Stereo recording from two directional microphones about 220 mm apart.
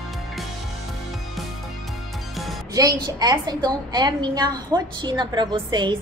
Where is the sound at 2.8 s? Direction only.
15° right (ahead or behind).